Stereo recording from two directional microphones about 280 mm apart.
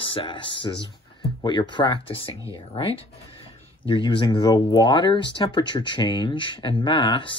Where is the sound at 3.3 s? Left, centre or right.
Centre.